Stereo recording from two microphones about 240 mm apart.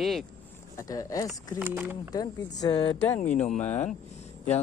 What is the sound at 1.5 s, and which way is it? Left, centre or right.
Speech, centre.